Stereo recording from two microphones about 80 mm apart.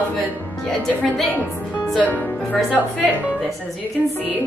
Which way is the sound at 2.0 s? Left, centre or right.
Left.